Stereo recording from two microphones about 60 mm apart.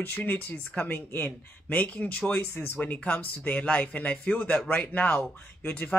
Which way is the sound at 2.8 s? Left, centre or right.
Left.